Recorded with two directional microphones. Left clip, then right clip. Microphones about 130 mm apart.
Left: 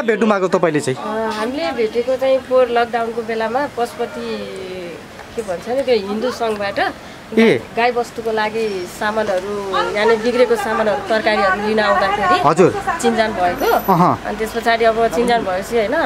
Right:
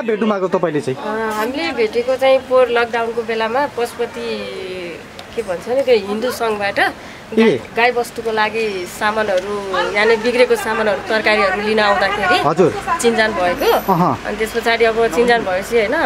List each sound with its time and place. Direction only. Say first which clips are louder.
0.0 s speech: left 2 dB; 25° left (ahead or behind)
1.3 s speech: right 1 dB; 15° right (ahead or behind)
5.9 s speech: right 2 dB; 10° right (ahead or behind)
12.4 s speech: left 2 dB; 20° left (ahead or behind)
13.0 s a woman's voice: right 1 dB; 5° right (ahead or behind)
13.8 s speech: left 2 dB; 10° left (ahead or behind)
14.4 s a woman's voice: even; centre (ahead or behind)